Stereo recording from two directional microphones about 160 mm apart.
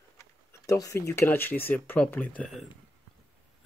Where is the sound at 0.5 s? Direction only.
20° left (ahead or behind); by 2.7 s 5° left (ahead or behind).